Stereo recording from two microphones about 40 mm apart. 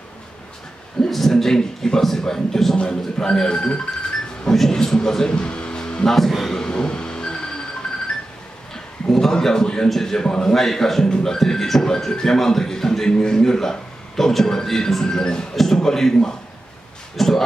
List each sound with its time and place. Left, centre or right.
1.0 s a man's voice: centre
4.5 s speech: centre
5.3 s music: left
6.0 s a man's voice: centre
6.5 s vehicle: left
9.1 s a man's voice: centre
17.2 s music: centre